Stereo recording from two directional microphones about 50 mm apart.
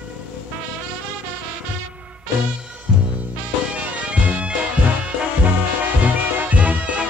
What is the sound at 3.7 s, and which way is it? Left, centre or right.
Bagpipes, right.